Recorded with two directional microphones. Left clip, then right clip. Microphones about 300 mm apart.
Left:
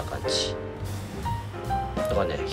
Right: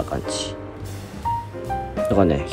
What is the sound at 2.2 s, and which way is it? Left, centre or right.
Speech, centre.